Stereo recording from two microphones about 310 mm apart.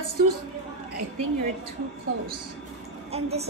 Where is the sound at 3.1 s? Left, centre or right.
Centre.